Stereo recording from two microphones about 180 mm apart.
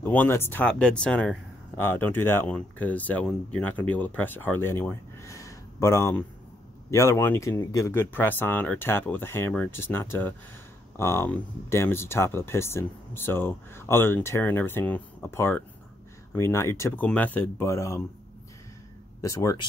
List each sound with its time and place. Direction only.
0.0 s speech: 10° left (ahead or behind)
19.2 s speech: 15° left (ahead or behind)